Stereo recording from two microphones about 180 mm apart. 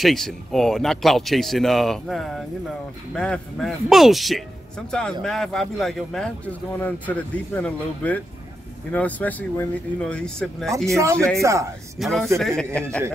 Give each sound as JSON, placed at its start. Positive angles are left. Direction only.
{"t": 0.0, "sound": "speech", "side_deg": 0}
{"t": 11.0, "sound": "speech", "side_deg": -15}
{"t": 12.0, "sound": "speech", "side_deg": 0}